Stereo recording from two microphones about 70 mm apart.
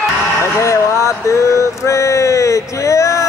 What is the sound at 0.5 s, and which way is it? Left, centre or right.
Music, left.